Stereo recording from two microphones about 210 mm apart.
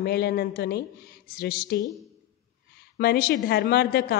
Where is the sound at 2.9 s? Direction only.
50° left (ahead or behind).